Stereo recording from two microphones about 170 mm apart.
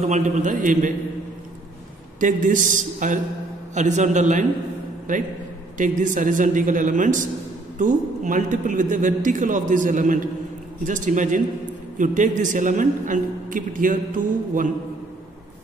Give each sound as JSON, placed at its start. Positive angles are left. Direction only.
{"t": 0.0, "sound": "a man's voice", "side_deg": -45}
{"t": 2.1, "sound": "a man's voice", "side_deg": -50}